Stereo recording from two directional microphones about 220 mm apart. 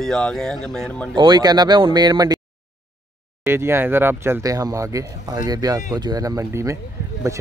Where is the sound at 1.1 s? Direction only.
20° right (ahead or behind).